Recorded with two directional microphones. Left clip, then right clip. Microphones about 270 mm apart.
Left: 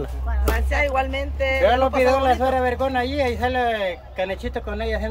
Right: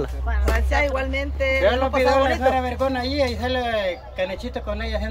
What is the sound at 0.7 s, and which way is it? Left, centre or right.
Speech, centre.